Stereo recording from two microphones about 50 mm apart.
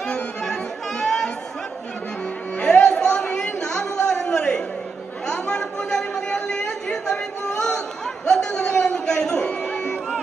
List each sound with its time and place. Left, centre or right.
0.0 s music: centre
2.6 s a sound: centre
5.2 s chatter: centre
8.3 s music: centre